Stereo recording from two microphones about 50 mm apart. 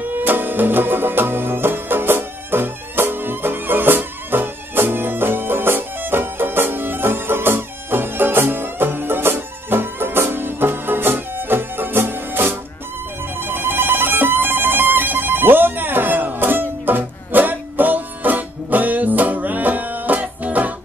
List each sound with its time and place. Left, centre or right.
0.1 s music: right